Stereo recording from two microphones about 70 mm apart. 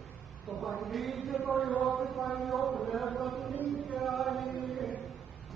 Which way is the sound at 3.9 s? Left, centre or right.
Centre.